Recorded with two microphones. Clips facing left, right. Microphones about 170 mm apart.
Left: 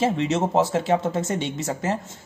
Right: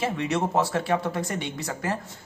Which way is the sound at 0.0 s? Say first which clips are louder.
Left 4 dB; 25° left (ahead or behind).